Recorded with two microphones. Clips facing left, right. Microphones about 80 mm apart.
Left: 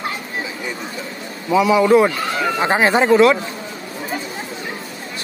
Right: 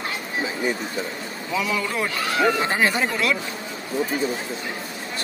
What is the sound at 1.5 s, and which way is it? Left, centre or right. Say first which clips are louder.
Speech: left 10 dB; centre.